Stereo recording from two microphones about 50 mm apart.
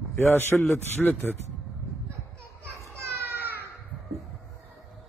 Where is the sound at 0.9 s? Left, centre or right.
Left.